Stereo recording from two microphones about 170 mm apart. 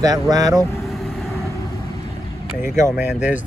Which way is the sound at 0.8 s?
Centre (ahead or behind).